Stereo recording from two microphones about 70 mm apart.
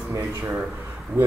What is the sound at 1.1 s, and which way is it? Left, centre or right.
Speech, right.